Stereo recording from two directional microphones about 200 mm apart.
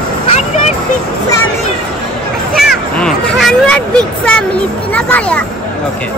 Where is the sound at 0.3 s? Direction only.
35° left (ahead or behind).